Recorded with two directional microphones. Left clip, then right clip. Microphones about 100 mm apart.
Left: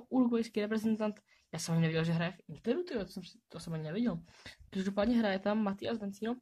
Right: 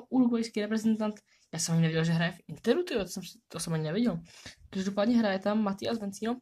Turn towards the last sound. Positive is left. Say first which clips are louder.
# right 4 dB
turn(degrees=5)  # may be behind; listen again after turning